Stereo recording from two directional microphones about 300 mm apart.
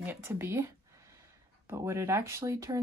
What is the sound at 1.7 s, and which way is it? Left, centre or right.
Speech, centre.